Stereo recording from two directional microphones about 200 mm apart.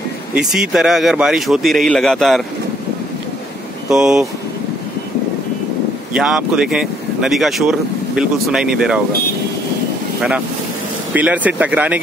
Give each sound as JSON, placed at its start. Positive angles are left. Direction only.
{"t": 0.3, "sound": "speech", "side_deg": -5}
{"t": 3.9, "sound": "speech", "side_deg": -5}
{"t": 6.1, "sound": "speech", "side_deg": -5}
{"t": 11.1, "sound": "speech", "side_deg": -5}